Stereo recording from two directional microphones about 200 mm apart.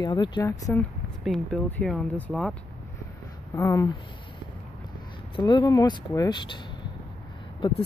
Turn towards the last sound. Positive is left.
turn(degrees=25)  # may be behind; listen again after turning